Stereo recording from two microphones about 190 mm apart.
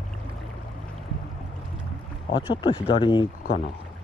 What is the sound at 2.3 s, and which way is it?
Speech, 25° left (ahead or behind).